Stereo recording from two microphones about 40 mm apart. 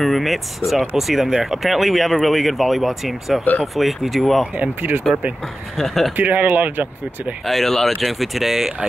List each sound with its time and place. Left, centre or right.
0.0 s speech: centre
6.1 s speech: right
7.4 s speech: centre